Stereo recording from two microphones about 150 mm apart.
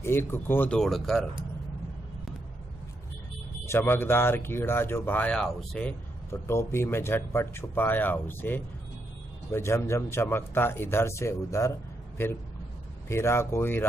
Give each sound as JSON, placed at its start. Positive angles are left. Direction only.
{"t": 0.0, "sound": "speech", "side_deg": 15}
{"t": 3.6, "sound": "speech", "side_deg": 15}